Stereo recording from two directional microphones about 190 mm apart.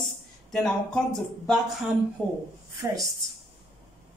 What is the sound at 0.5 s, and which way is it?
Speech, centre (ahead or behind).